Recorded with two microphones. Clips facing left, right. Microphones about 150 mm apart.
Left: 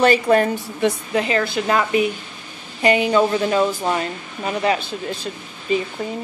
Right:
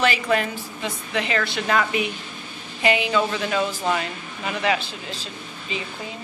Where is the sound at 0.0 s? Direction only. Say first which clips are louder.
Left 7 dB; 45° left (ahead or behind).